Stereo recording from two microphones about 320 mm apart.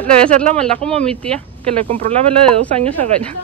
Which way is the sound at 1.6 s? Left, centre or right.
Centre.